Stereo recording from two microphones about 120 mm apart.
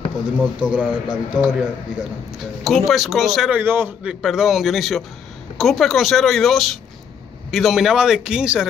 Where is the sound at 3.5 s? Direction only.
20° right (ahead or behind).